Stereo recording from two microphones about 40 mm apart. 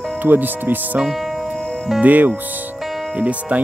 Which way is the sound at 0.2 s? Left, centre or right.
Right.